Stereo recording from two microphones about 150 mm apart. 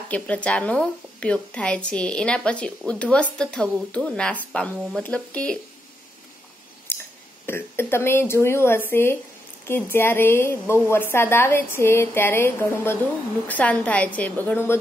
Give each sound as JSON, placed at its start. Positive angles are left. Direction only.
{"t": 0.1, "sound": "a woman's voice", "side_deg": 10}
{"t": 6.9, "sound": "clicking", "side_deg": 15}
{"t": 7.4, "sound": "a woman's voice", "side_deg": 15}